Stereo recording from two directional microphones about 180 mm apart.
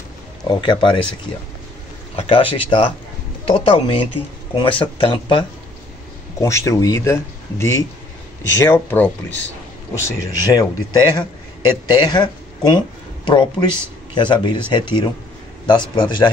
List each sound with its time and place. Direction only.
0.5 s speech: 25° left (ahead or behind)
2.1 s speech: 30° left (ahead or behind)
6.4 s speech: 15° left (ahead or behind)